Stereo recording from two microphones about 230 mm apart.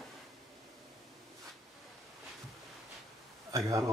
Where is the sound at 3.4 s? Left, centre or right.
Centre.